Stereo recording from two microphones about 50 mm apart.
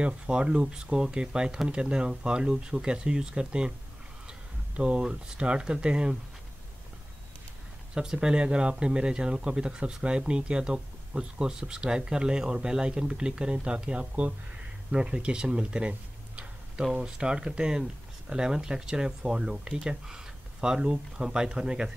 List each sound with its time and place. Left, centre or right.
0.0 s speech: right
7.9 s speech: centre